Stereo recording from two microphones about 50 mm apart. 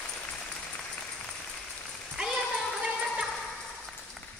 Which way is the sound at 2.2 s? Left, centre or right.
Centre.